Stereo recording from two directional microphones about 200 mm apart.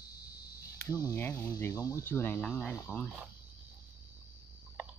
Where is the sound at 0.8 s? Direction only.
20° left (ahead or behind).